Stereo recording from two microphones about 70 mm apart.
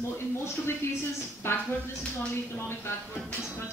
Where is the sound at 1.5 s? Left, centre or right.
Left.